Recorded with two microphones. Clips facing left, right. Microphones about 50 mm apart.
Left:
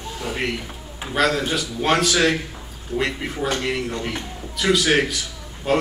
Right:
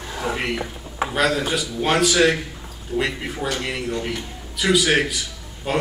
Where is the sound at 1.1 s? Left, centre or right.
Centre.